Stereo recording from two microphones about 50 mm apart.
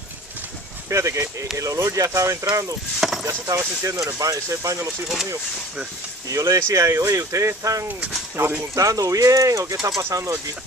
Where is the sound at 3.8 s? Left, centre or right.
Right.